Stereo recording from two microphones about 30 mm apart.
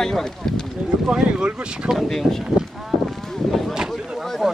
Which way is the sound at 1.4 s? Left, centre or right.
Right.